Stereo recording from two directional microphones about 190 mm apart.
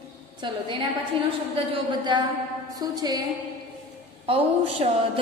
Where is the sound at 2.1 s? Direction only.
25° right (ahead or behind).